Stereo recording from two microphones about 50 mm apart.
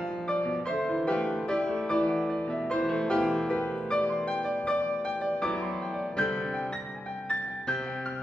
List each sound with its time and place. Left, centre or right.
0.5 s music: centre